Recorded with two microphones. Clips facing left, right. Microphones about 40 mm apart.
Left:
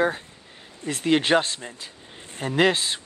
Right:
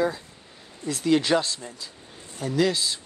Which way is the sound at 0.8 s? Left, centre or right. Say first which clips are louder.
Even; left.